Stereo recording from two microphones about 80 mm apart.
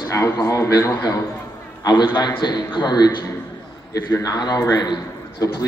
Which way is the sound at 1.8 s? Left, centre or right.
Left.